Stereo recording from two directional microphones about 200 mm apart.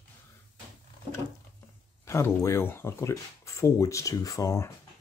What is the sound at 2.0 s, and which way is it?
Speech, 15° left (ahead or behind).